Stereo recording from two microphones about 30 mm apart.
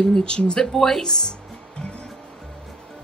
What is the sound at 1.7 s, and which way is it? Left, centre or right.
Music, left.